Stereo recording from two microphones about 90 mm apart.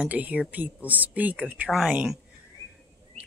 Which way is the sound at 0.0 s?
15° right (ahead or behind).